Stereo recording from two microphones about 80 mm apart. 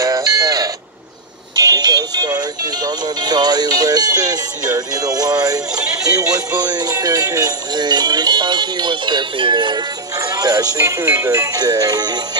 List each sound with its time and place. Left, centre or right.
0.0 s sheep: right
1.5 s speech: right
10.1 s speech: right
11.6 s music: right